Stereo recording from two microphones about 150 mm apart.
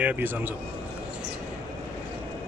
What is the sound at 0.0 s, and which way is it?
Speech, 10° right (ahead or behind).